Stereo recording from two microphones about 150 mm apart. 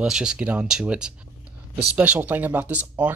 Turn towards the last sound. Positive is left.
turn(degrees=-10)  # may be behind; listen again after turning